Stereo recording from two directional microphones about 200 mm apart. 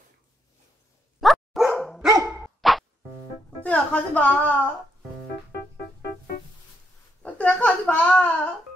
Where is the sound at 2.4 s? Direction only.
Centre (ahead or behind).